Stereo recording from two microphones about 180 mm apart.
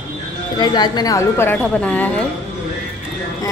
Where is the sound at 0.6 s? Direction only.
20° left (ahead or behind).